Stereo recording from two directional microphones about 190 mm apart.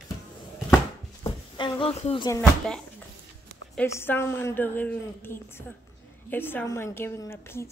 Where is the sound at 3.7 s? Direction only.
10° left (ahead or behind).